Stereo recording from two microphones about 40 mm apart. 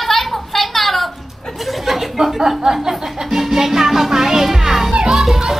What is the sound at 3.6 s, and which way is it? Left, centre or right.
Music, centre.